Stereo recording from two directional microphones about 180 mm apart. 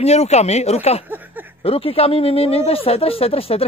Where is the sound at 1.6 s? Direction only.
30° left (ahead or behind).